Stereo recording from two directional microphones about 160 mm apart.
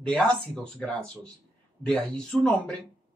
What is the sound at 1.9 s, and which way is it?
Speech, 5° left (ahead or behind).